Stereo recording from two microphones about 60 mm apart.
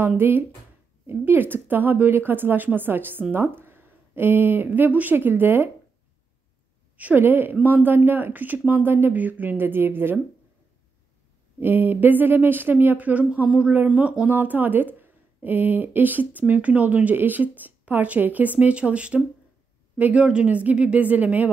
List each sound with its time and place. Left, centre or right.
0.2 s speech: right
7.2 s speech: right
11.6 s speech: right